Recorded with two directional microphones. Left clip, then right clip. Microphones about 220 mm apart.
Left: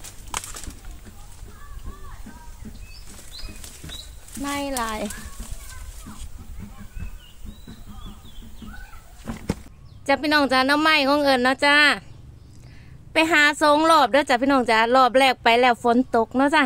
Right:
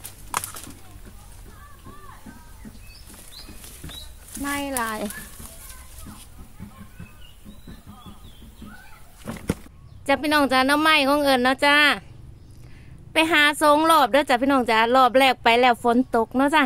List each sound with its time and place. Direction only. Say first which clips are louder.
3.8 s a sound: left 1 dB; 45° right (ahead or behind)
4.4 s speech: even; 10° right (ahead or behind)
9.2 s fowl: right 1 dB; 30° right (ahead or behind)
10.0 s speech: left 1 dB; centre (ahead or behind)
13.1 s speech: left 1 dB; centre (ahead or behind)